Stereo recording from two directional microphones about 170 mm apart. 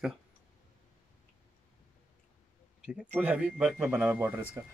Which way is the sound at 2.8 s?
5° right (ahead or behind).